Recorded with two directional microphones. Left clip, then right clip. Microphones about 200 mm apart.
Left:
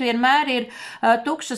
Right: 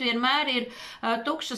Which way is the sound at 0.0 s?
35° left (ahead or behind).